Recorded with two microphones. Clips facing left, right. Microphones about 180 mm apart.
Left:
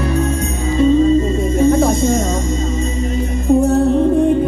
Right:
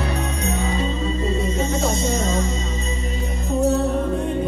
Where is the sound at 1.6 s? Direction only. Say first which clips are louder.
Left 13 dB; 55° left (ahead or behind).